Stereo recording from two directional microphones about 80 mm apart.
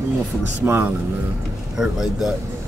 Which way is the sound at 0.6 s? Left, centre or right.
Right.